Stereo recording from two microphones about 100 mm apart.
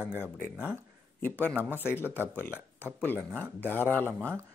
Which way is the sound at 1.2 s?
20° left (ahead or behind).